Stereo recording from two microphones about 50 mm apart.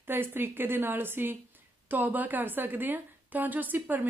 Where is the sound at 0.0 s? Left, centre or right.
Right.